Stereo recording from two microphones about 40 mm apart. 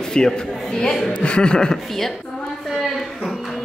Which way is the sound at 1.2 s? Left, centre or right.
Left.